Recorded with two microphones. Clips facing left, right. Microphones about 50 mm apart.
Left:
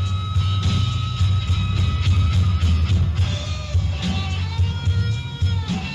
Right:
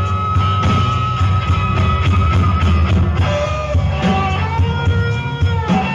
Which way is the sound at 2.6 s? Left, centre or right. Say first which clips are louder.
Right 8 dB; right.